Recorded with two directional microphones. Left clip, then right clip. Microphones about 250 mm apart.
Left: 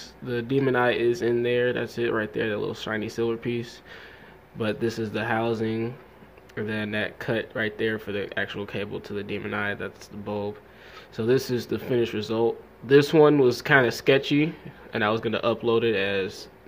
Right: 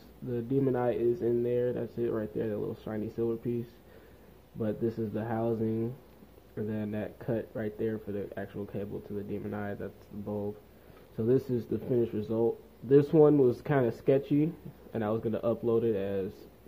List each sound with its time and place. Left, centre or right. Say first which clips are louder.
0.3 s a man's voice: left 6 dB; centre
10.2 s speech: left 6 dB; centre
11.1 s speech: left 5 dB; centre
12.3 s speech: left 5 dB; left
12.8 s speech: left 5 dB; centre